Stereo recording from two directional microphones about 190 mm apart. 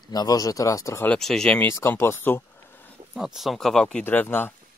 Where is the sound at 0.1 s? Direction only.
20° left (ahead or behind).